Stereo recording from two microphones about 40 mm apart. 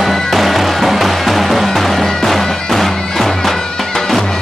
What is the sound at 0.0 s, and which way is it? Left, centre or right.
Music, centre.